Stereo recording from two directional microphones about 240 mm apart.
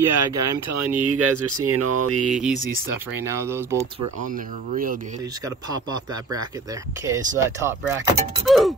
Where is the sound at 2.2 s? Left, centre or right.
Centre.